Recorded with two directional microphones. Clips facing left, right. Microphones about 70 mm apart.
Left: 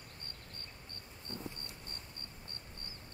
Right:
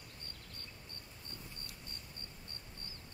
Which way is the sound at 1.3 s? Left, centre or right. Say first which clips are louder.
Left 8 dB; left.